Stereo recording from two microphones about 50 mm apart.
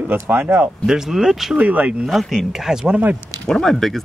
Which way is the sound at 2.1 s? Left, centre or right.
Centre.